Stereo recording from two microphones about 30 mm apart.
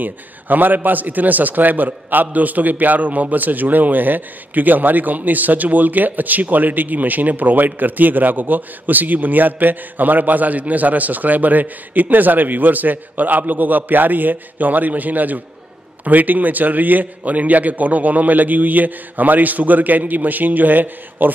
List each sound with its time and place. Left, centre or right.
0.0 s a man's voice: right